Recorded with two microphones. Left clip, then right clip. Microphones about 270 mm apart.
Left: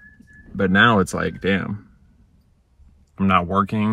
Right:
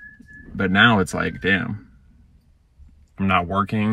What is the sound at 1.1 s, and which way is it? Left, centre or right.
Speech, centre.